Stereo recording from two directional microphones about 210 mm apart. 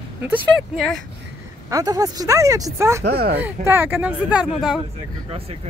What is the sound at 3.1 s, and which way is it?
Speech, 50° right (ahead or behind).